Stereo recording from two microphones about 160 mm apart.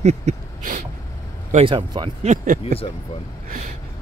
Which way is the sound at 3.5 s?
50° right (ahead or behind).